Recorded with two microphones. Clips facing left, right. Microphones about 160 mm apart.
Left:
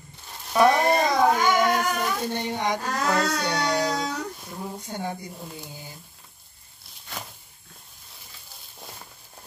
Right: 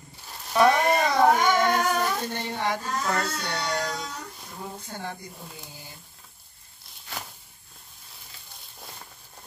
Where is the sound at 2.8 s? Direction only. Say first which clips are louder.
Left 3 dB; 75° left (ahead or behind).